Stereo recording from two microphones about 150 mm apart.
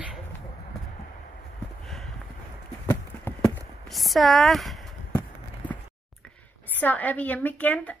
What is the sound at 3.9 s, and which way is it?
Speech, centre (ahead or behind).